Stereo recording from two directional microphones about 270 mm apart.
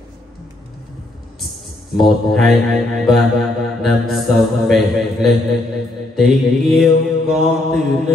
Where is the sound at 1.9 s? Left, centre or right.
Centre.